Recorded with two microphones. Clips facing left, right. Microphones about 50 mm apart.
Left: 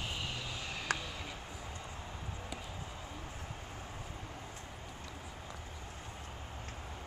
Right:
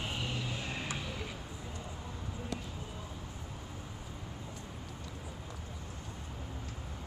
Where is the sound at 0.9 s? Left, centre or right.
Left.